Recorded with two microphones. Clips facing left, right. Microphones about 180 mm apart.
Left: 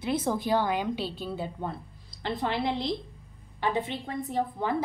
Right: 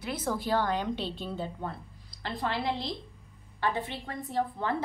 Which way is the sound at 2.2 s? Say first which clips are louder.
Left 3 dB; 20° left (ahead or behind).